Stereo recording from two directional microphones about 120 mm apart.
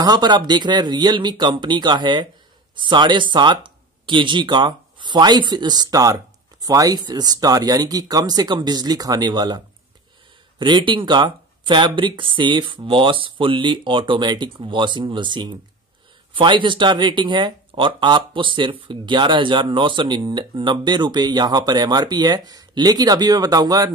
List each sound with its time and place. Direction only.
0.0 s speech: 35° right (ahead or behind)
10.6 s speech: 40° right (ahead or behind)